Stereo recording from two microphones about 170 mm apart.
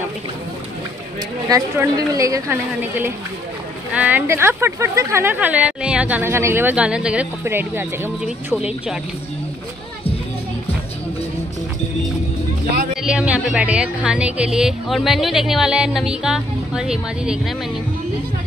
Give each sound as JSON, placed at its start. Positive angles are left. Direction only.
{"t": 1.5, "sound": "a woman's voice", "side_deg": -20}
{"t": 13.0, "sound": "speech", "side_deg": -5}